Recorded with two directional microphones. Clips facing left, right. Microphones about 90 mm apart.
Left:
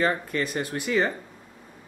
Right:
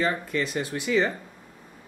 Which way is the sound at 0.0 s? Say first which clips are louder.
Left 1 dB; 45° left (ahead or behind).